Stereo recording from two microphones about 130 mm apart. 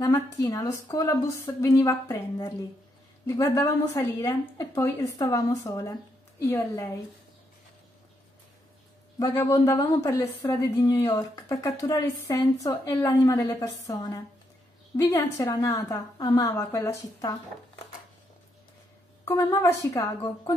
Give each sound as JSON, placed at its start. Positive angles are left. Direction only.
{"t": 0.0, "sound": "speech", "side_deg": 30}
{"t": 3.3, "sound": "speech", "side_deg": 25}
{"t": 9.3, "sound": "speech", "side_deg": 20}
{"t": 19.2, "sound": "speech", "side_deg": 25}